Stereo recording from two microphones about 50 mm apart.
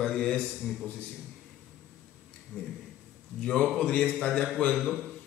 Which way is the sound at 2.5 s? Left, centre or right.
Left.